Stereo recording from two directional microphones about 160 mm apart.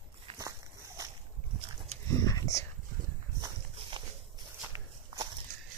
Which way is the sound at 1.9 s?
45° right (ahead or behind).